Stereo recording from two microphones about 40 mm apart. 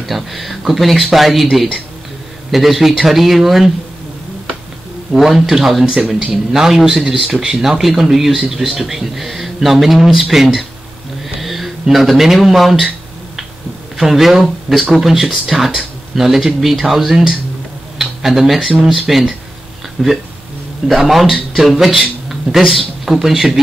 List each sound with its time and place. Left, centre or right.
0.0 s speech: centre
5.1 s speech: centre
5.9 s speech: centre
11.2 s a sound: centre
13.9 s speech: centre
17.9 s a sound: centre
18.9 s a man's voice: centre